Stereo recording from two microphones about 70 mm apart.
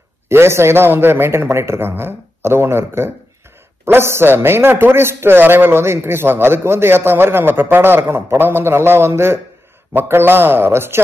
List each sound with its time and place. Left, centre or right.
0.3 s a man's voice: right